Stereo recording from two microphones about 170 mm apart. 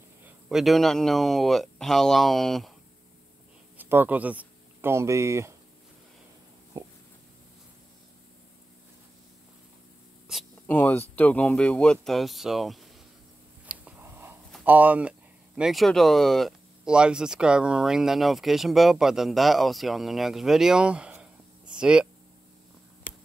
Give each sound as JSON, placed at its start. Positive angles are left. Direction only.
{"t": 0.5, "sound": "speech", "side_deg": 0}
{"t": 3.7, "sound": "speech", "side_deg": -10}
{"t": 10.3, "sound": "a sound", "side_deg": -5}
{"t": 10.7, "sound": "speech", "side_deg": 10}
{"t": 13.7, "sound": "a sound", "side_deg": -10}
{"t": 14.6, "sound": "speech", "side_deg": -10}